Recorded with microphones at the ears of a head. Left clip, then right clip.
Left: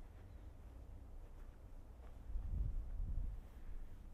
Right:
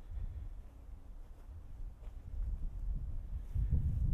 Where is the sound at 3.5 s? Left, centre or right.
Right.